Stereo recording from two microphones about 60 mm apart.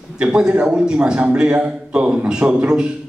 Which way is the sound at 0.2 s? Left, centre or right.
Centre.